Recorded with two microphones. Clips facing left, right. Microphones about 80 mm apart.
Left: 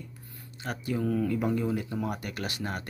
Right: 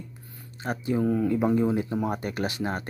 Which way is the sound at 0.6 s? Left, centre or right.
Right.